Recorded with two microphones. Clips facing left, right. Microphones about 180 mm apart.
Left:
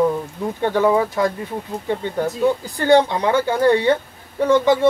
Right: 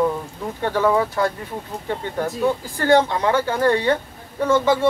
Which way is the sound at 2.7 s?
20° left (ahead or behind).